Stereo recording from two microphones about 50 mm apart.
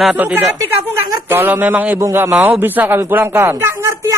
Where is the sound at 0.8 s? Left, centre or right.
Right.